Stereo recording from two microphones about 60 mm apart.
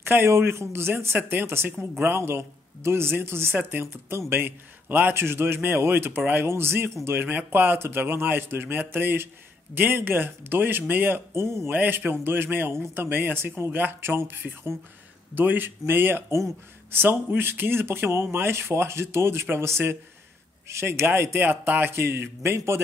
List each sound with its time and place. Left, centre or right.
0.0 s a man's voice: right
2.1 s a man's voice: right
11.7 s a man's voice: right
21.4 s a man's voice: right